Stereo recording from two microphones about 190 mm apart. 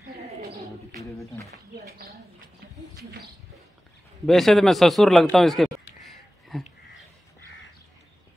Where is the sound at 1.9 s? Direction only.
55° right (ahead or behind).